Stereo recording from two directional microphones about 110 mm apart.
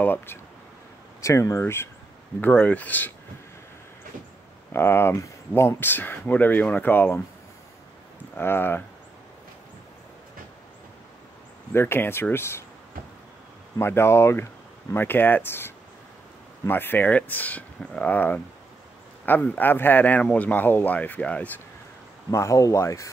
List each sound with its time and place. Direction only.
0.0 s speech: 15° left (ahead or behind)
4.7 s speech: 20° left (ahead or behind)
8.4 s speech: 20° left (ahead or behind)
11.7 s speech: 20° left (ahead or behind)
13.7 s speech: 25° left (ahead or behind)
22.3 s speech: 25° left (ahead or behind)